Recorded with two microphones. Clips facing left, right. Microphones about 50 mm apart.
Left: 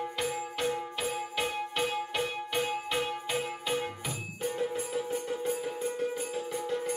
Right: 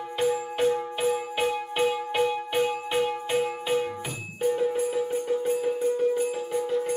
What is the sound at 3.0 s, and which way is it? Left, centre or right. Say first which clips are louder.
Music: right 7 dB; centre.